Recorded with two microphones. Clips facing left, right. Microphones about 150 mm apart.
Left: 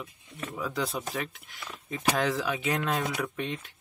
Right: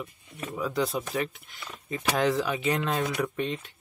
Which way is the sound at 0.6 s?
Centre (ahead or behind).